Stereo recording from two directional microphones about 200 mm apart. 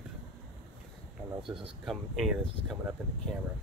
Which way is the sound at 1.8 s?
Centre (ahead or behind).